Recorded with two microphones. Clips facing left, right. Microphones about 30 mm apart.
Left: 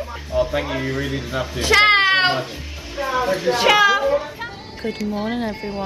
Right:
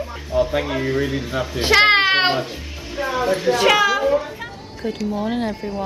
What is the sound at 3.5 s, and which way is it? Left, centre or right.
Speech, centre.